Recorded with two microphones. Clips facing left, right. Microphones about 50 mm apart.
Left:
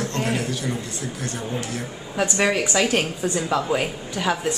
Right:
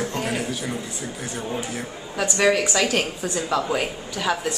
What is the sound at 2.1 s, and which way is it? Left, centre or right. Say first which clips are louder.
A woman's voice: right 1 dB; centre.